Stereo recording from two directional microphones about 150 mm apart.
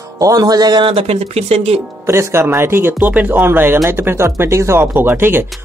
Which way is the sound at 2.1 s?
20° right (ahead or behind).